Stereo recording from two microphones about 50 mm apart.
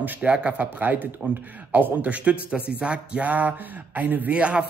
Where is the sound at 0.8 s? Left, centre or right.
Right.